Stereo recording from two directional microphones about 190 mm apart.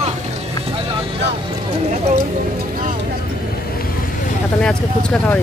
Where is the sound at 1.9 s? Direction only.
40° right (ahead or behind).